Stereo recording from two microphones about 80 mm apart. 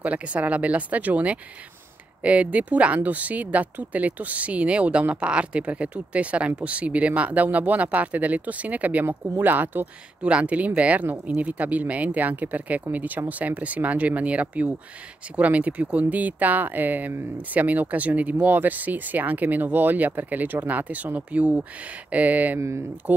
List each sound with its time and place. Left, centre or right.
0.0 s speech: centre
22.6 s speech: right